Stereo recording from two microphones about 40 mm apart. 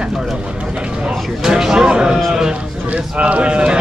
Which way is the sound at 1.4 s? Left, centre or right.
Centre.